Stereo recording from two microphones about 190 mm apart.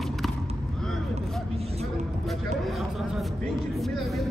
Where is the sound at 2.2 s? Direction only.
Centre (ahead or behind).